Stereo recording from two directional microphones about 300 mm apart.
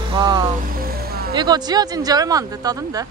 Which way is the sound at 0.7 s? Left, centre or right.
Right.